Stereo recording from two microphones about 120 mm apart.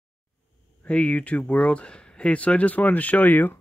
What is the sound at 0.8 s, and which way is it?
Speech, 10° left (ahead or behind).